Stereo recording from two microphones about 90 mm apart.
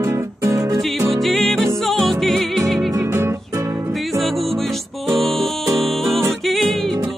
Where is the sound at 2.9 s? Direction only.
30° right (ahead or behind).